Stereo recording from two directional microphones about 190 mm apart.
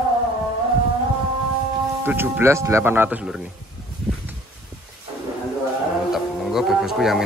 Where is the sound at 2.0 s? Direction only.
10° right (ahead or behind).